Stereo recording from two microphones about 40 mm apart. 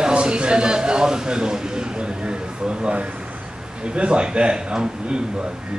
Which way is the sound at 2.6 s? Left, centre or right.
Right.